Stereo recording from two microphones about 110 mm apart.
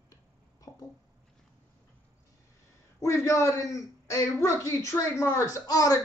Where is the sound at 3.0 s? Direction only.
30° left (ahead or behind).